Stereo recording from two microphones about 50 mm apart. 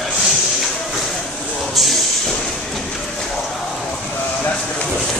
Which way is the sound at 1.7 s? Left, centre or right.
Centre.